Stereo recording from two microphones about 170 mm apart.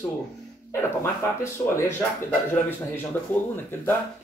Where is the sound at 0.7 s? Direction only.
15° left (ahead or behind).